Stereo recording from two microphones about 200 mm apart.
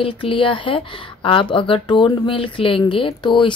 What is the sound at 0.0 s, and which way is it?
Speech, 25° left (ahead or behind).